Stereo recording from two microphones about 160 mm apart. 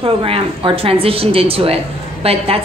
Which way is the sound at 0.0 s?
35° right (ahead or behind).